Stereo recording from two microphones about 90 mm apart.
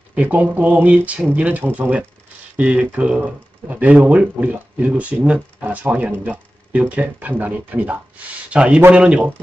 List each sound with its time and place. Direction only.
0.1 s speech: 15° right (ahead or behind)